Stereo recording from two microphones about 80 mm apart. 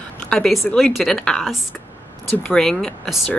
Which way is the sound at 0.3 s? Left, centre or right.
Centre.